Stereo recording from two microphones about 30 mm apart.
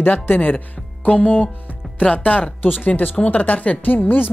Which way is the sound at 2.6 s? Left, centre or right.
Left.